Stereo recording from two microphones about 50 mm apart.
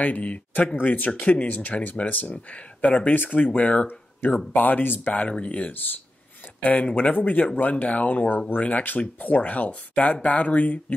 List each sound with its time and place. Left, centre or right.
0.0 s speech: left
4.2 s speech: left